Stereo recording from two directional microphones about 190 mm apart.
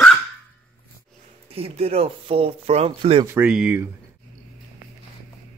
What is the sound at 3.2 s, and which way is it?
Speech, 10° right (ahead or behind).